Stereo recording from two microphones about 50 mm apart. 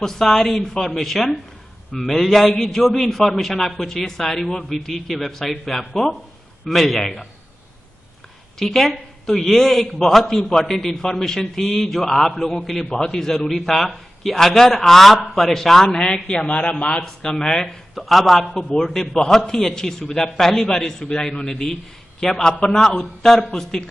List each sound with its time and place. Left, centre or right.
0.0 s a man's voice: centre
8.5 s a man's voice: centre
17.9 s speech: centre
18.9 s a man's voice: centre